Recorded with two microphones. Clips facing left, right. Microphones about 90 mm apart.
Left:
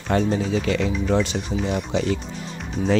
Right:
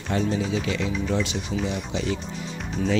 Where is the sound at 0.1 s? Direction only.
55° left (ahead or behind).